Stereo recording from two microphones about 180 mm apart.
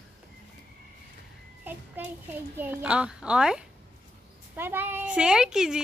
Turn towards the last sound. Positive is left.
turn(degrees=-5)  # may be behind; listen again after turning